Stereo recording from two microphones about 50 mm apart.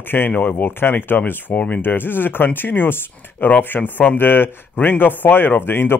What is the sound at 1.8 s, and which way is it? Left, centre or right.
Speech, left.